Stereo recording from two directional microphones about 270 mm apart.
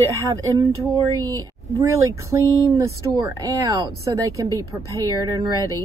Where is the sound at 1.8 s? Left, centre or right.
Centre.